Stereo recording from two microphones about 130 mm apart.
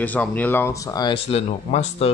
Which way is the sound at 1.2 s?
50° left (ahead or behind).